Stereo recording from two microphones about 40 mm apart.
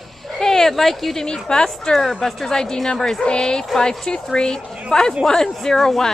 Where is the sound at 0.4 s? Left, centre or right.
Centre.